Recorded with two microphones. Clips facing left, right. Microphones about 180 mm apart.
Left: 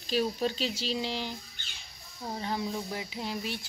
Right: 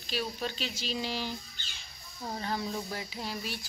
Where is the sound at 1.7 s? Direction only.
Centre (ahead or behind).